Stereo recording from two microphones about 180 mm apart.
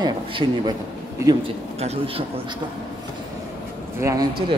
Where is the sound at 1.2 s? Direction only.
35° right (ahead or behind).